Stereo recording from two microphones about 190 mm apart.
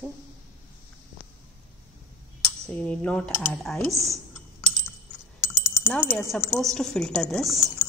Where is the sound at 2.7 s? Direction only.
5° left (ahead or behind).